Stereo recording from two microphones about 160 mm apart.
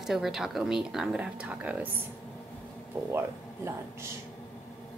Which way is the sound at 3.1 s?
15° right (ahead or behind).